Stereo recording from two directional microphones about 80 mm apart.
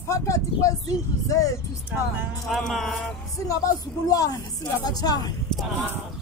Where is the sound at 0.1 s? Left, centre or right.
Left.